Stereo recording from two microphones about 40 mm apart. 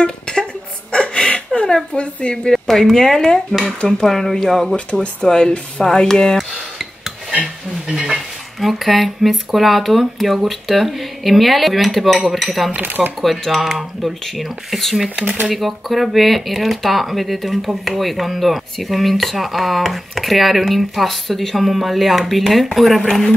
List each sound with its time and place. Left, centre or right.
0.0 s a sound: centre
2.0 s a woman's voice: left
2.3 s dishes: centre
5.2 s dishes: centre
7.4 s a sound: centre
8.5 s speech: centre
12.8 s speech: right
13.2 s speech: centre
15.1 s speech: right
15.5 s speech: centre
23.0 s dishes: centre